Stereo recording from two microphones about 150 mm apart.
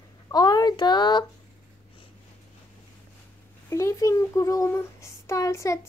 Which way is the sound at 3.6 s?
20° left (ahead or behind).